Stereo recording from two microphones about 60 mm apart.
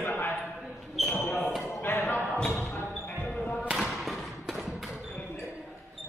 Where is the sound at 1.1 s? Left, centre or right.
Left.